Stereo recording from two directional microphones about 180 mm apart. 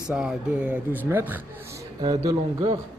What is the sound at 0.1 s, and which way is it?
Speech, 5° right (ahead or behind).